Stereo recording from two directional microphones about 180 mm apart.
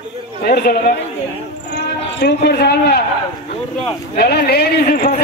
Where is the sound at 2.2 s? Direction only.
65° left (ahead or behind).